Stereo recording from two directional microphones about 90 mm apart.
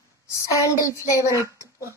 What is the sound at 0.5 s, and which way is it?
Speech, 35° left (ahead or behind).